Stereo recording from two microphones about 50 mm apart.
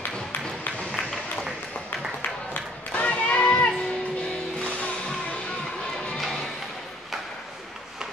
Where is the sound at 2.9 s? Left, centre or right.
Left.